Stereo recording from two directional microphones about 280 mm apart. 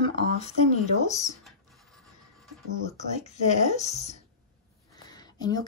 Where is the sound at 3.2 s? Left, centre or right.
Left.